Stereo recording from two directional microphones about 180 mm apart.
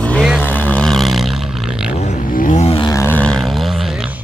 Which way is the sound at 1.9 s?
40° left (ahead or behind).